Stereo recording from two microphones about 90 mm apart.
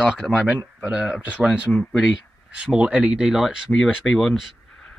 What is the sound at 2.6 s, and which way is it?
Speech, 10° right (ahead or behind).